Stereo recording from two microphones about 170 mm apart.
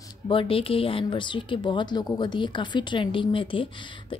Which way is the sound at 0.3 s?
30° left (ahead or behind).